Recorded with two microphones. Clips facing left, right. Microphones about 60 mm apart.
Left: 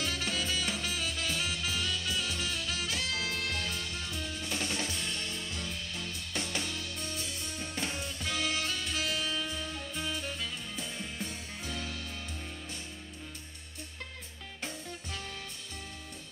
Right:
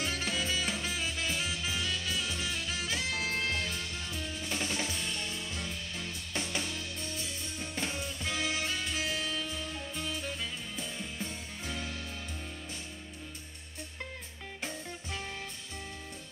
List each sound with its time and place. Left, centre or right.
0.0 s music: right
4.2 s music: centre
8.2 s music: centre
9.3 s music: centre
11.2 s music: centre